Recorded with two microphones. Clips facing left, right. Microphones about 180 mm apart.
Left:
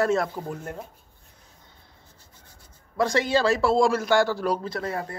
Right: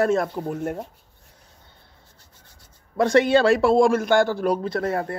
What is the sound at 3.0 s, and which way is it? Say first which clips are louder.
A man's voice: right 5 dB; 60° right (ahead or behind).